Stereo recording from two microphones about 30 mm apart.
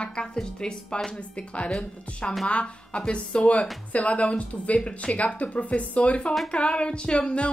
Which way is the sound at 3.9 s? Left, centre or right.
Left.